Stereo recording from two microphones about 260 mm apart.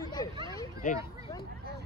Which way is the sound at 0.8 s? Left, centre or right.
Left.